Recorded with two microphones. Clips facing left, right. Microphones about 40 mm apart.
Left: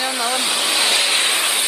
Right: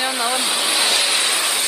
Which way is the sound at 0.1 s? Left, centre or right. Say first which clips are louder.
Even; centre.